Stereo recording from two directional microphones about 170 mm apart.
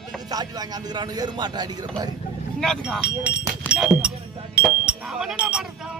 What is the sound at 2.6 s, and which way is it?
Speech, centre (ahead or behind).